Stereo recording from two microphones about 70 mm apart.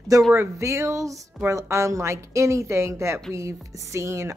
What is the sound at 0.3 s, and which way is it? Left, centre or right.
Speech, right.